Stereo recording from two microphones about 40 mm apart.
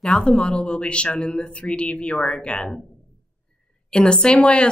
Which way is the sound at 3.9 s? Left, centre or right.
Left.